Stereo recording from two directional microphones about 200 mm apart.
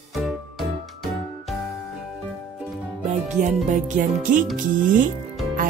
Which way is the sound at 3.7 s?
40° right (ahead or behind).